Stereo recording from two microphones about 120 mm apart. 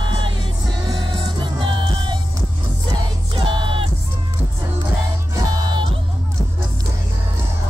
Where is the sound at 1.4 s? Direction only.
45° right (ahead or behind).